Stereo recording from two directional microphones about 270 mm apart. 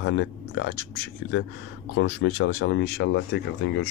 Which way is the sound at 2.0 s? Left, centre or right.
Left.